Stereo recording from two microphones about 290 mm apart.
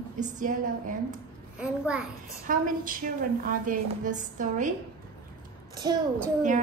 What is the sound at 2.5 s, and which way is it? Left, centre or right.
A woman's voice, right.